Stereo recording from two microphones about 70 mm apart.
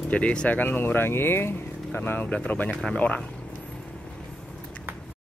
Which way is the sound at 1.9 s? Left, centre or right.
Left.